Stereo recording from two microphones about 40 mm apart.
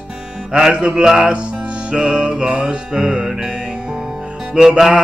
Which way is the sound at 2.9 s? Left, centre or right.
Centre.